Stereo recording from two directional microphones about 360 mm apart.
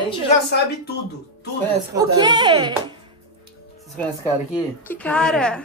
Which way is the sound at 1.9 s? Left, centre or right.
Centre.